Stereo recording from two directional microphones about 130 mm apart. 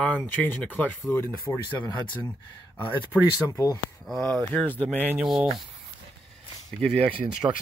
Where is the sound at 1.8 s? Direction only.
35° left (ahead or behind).